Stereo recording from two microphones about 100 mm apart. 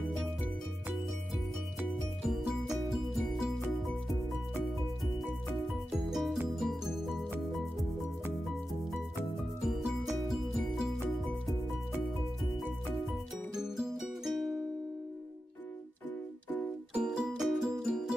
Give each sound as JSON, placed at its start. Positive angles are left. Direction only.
{"t": 2.2, "sound": "music", "side_deg": -5}
{"t": 5.9, "sound": "music", "side_deg": 0}
{"t": 9.7, "sound": "music", "side_deg": 0}
{"t": 13.6, "sound": "music", "side_deg": -5}
{"t": 16.9, "sound": "music", "side_deg": -10}